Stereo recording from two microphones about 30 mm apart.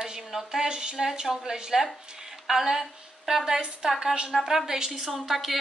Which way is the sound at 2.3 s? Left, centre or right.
Centre.